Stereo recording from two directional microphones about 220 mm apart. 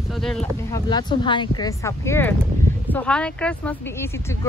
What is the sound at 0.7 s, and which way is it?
Speech, 20° left (ahead or behind).